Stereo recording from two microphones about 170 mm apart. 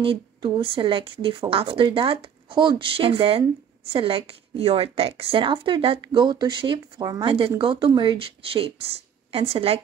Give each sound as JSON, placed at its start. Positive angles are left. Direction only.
{"t": 0.0, "sound": "speech", "side_deg": -30}